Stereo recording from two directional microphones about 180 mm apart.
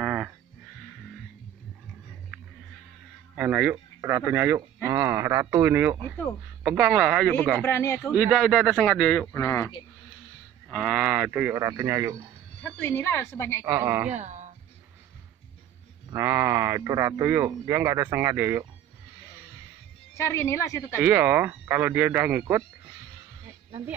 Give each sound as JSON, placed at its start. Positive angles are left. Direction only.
{"t": 0.0, "sound": "a sound", "side_deg": -5}
{"t": 3.3, "sound": "speech", "side_deg": -5}
{"t": 7.6, "sound": "a woman's voice", "side_deg": 15}
{"t": 8.3, "sound": "speech", "side_deg": 0}
{"t": 10.7, "sound": "speech", "side_deg": 0}
{"t": 12.8, "sound": "a woman's voice", "side_deg": 10}
{"t": 13.7, "sound": "speech", "side_deg": -15}
{"t": 14.1, "sound": "speech", "side_deg": -40}
{"t": 16.1, "sound": "speech", "side_deg": -15}
{"t": 20.2, "sound": "a woman's voice", "side_deg": 15}
{"t": 21.0, "sound": "speech", "side_deg": -10}